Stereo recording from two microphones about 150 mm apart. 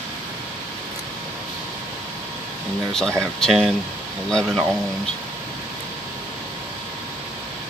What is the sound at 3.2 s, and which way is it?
Speech, 5° left (ahead or behind).